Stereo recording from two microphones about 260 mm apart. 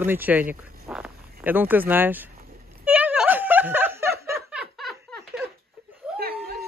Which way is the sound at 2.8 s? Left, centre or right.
Centre.